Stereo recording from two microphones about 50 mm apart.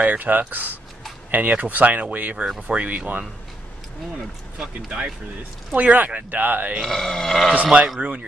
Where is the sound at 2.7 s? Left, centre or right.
Right.